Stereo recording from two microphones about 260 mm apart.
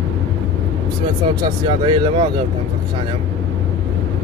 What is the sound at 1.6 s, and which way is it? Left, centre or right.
Speech, centre.